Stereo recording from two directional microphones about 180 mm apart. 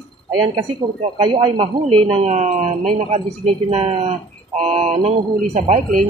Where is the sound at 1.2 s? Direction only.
30° right (ahead or behind).